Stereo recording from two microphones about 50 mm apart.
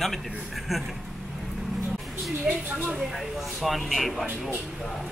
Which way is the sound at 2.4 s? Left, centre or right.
Right.